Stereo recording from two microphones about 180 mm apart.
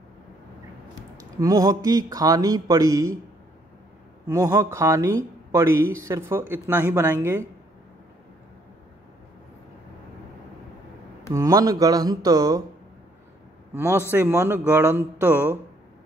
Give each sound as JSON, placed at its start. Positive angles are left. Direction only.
{"t": 1.4, "sound": "speech", "side_deg": -20}
{"t": 4.3, "sound": "speech", "side_deg": -15}
{"t": 11.3, "sound": "speech", "side_deg": -20}
{"t": 13.7, "sound": "speech", "side_deg": -15}